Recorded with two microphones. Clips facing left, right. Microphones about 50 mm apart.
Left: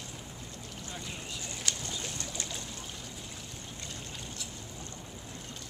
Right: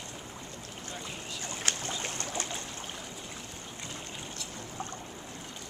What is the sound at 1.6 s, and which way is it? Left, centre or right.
Boat, right.